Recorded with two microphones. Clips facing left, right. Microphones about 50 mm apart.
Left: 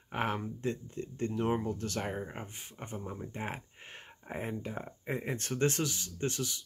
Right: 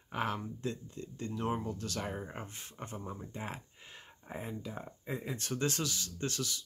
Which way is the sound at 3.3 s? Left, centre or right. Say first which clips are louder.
Left 3 dB; left.